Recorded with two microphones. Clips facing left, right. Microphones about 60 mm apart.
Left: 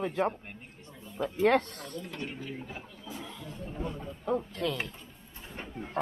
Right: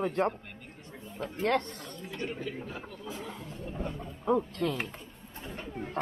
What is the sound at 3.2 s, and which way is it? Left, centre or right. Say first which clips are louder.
Roaring cats: right 1 dB; right.